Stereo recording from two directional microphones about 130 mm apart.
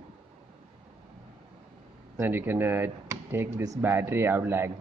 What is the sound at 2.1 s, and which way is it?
Speech, 15° right (ahead or behind).